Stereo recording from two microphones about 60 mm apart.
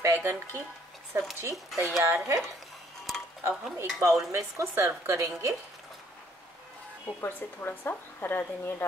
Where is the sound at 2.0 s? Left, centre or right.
Right.